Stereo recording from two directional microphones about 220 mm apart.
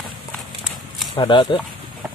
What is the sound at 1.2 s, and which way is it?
Speech, 20° left (ahead or behind).